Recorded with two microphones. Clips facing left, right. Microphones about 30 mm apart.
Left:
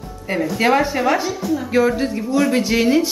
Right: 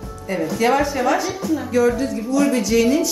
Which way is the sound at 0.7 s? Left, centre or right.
Left.